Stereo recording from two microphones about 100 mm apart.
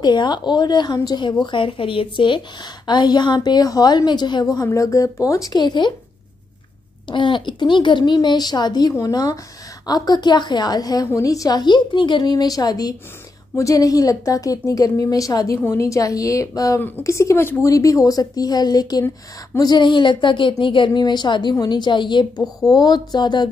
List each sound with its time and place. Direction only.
0.0 s a woman's voice: 50° left (ahead or behind)
1.4 s a woman's voice: 55° left (ahead or behind); by 5.6 s 35° left (ahead or behind)
5.6 s a woman's voice: 50° left (ahead or behind)
7.1 s a woman's voice: 55° left (ahead or behind)